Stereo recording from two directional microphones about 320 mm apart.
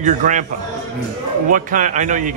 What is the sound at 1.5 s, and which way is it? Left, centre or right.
Speech, right.